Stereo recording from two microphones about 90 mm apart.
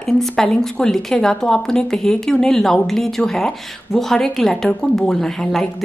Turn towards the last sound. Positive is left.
turn(degrees=5)  # may be behind; listen again after turning